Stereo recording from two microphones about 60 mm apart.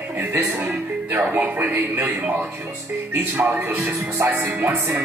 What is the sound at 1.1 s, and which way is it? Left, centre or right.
Speech, right.